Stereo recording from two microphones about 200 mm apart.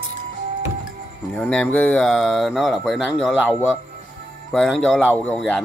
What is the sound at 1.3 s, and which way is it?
Speech, 5° left (ahead or behind).